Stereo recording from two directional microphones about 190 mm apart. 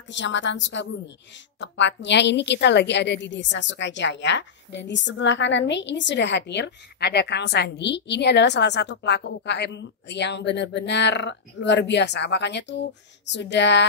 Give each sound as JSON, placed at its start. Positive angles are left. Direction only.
{"t": 0.1, "sound": "a woman's voice", "side_deg": 70}